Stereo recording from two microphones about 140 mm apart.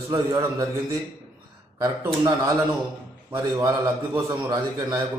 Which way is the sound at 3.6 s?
25° right (ahead or behind).